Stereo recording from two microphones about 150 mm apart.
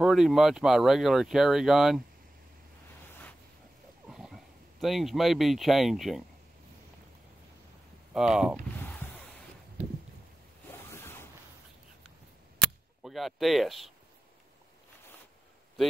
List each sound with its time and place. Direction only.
0.0 s speech: centre (ahead or behind)
4.1 s speech: centre (ahead or behind)
8.1 s speech: 5° right (ahead or behind)
8.8 s a sound: 10° left (ahead or behind)
10.7 s zipper: 15° left (ahead or behind)
13.0 s speech: centre (ahead or behind)